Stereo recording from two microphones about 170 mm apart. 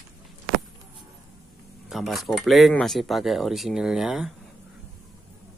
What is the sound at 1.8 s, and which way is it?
Speech, centre (ahead or behind).